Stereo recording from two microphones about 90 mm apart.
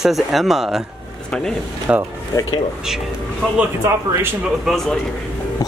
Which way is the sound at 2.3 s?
40° left (ahead or behind).